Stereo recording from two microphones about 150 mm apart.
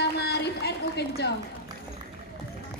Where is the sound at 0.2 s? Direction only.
90° left.